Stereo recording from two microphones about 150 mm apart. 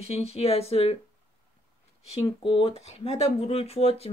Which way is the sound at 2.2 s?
35° left (ahead or behind).